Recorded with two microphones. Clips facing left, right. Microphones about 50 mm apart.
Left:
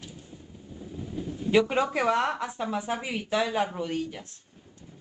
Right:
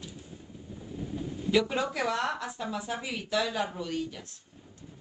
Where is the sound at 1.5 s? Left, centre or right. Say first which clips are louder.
Left 4 dB; left.